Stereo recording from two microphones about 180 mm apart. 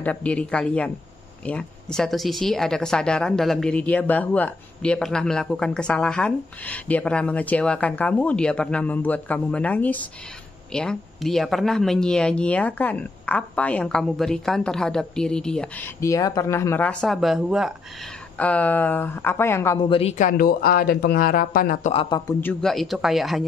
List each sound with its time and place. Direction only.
0.0 s speech: 10° left (ahead or behind)
16.0 s speech: 20° left (ahead or behind); by 17.7 s centre (ahead or behind)
18.4 s speech: 10° left (ahead or behind)
19.9 s speech: 35° left (ahead or behind); by 21.9 s 50° left (ahead or behind)
21.9 s speech: 20° left (ahead or behind); by 23.4 s centre (ahead or behind)